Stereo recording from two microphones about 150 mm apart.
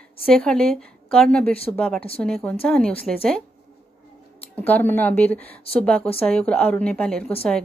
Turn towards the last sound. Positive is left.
turn(degrees=5)  # may be behind; listen again after turning